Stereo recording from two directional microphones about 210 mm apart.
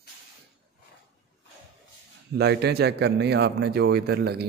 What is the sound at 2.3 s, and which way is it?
A man's voice, 50° right (ahead or behind).